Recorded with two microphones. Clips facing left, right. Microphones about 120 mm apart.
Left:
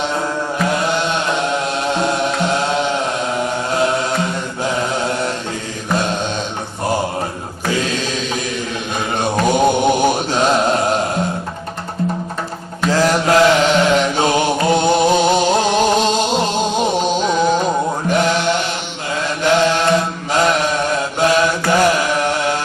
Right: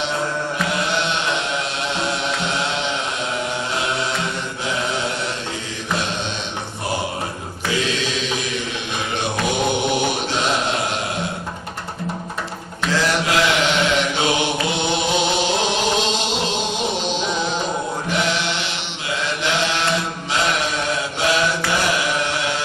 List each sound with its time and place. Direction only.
1.0 s chant: 45° left (ahead or behind)
3.7 s music: 45° left (ahead or behind)
7.6 s mantra: 45° left (ahead or behind)
12.8 s mantra: 40° left (ahead or behind)